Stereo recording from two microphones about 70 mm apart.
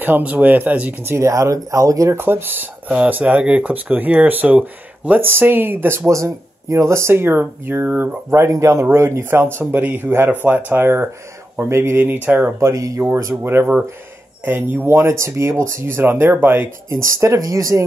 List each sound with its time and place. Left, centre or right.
0.0 s speech: right
1.0 s speech: right
2.1 s speech: right
6.0 s speech: right
8.5 s speech: right
12.5 s speech: right
13.4 s speech: right
16.9 s speech: right
17.4 s speech: right